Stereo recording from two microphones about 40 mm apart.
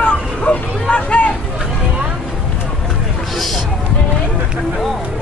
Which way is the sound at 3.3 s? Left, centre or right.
Centre.